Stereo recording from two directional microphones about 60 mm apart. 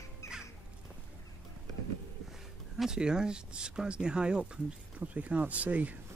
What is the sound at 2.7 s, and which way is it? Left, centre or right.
Speech, centre.